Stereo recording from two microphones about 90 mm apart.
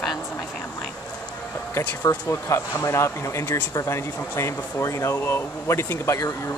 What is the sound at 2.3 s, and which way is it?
Speech, 30° left (ahead or behind).